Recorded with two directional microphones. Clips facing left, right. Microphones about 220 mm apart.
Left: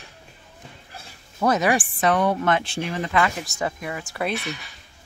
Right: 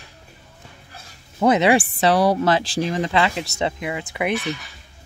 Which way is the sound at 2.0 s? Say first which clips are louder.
Right 3 dB; 35° right (ahead or behind).